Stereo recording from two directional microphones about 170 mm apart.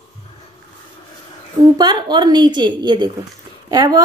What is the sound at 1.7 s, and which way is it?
A woman's voice, 25° right (ahead or behind).